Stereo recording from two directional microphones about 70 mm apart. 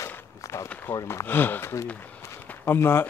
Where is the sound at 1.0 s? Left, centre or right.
Left.